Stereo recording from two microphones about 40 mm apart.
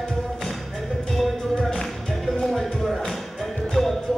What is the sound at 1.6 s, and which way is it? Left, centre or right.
Music, centre.